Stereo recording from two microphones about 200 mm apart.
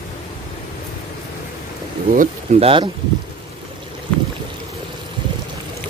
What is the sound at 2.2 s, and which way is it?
Speech, 30° right (ahead or behind).